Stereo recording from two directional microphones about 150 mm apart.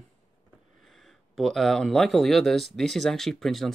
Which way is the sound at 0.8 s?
Centre (ahead or behind).